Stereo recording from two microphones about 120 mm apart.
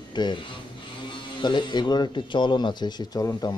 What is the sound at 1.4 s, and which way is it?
Speech, 40° left (ahead or behind).